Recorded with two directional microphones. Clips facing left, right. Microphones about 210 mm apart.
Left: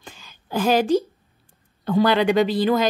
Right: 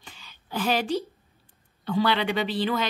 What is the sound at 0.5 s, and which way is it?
A woman's voice, 45° left (ahead or behind).